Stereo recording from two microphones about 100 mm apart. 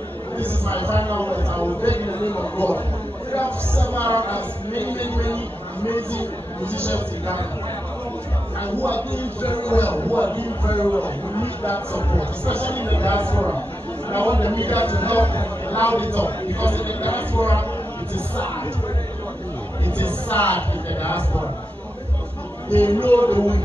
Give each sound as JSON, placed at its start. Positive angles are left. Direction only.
{"t": 0.4, "sound": "a man's voice", "side_deg": 15}
{"t": 3.3, "sound": "a sound", "side_deg": 15}
{"t": 5.9, "sound": "a man's voice", "side_deg": 15}
{"t": 8.8, "sound": "a man's voice", "side_deg": 15}
{"t": 20.0, "sound": "a man's voice", "side_deg": 15}
{"t": 23.0, "sound": "a man's voice", "side_deg": 15}